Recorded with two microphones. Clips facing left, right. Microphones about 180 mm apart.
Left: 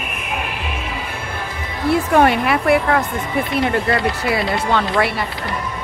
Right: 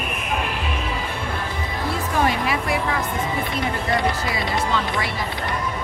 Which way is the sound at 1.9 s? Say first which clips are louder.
Left 9 dB; 65° left (ahead or behind).